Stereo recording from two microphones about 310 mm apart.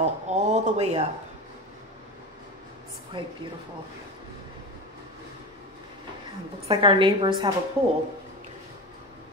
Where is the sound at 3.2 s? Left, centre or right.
Centre.